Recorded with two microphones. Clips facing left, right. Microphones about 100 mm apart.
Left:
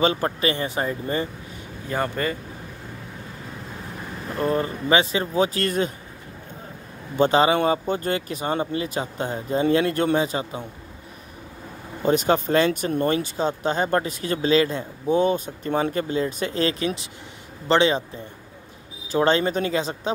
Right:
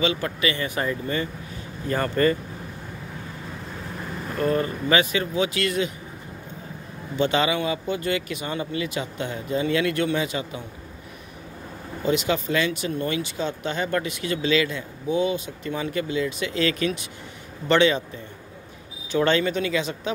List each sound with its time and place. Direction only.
0.0 s speech: 40° left (ahead or behind)
1.9 s speech: 10° left (ahead or behind)
4.4 s speech: 25° left (ahead or behind); by 5.9 s 40° left (ahead or behind)
7.2 s speech: 35° left (ahead or behind)
12.0 s speech: 45° left (ahead or behind)
16.8 s a man's voice: 25° left (ahead or behind)
19.1 s speech: 35° left (ahead or behind)